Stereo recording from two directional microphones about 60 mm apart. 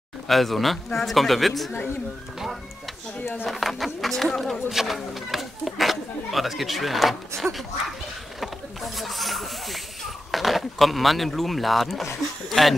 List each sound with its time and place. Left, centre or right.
0.3 s speech: centre
3.2 s speech: left
3.4 s speech: centre